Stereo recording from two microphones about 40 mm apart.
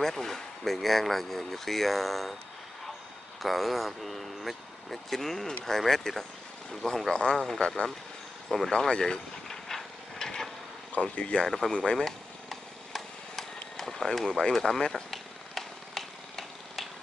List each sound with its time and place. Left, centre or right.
0.0 s speech: centre
3.4 s speech: centre
8.5 s speech: centre
8.7 s speech: centre
9.5 s a sound: centre
11.0 s speech: left
11.4 s speech: centre
11.7 s speech: centre
12.0 s a sound: centre
14.1 s speech: centre
14.9 s a sound: centre